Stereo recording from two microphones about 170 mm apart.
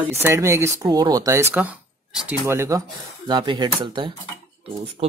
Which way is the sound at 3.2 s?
25° right (ahead or behind).